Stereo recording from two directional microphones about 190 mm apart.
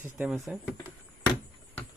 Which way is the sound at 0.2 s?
5° right (ahead or behind).